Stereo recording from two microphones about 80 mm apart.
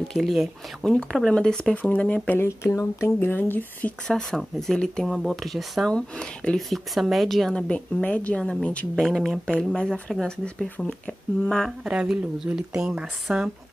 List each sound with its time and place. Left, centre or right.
0.1 s a woman's voice: centre
2.4 s speech: left
4.1 s a woman's voice: centre
5.0 s speech: centre
5.9 s a woman's voice: centre
6.7 s a woman's voice: centre
8.9 s a woman's voice: centre
11.8 s speech: centre